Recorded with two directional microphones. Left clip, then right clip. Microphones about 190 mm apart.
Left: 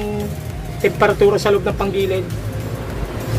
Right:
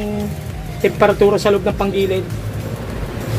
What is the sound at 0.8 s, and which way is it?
Speech, 30° right (ahead or behind).